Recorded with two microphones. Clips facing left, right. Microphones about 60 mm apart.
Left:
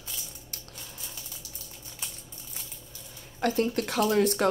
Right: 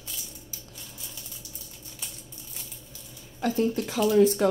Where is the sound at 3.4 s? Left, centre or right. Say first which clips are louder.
Right 1 dB; left.